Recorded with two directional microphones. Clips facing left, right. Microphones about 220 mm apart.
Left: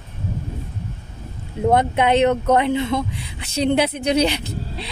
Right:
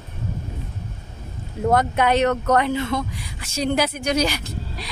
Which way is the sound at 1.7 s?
25° left (ahead or behind).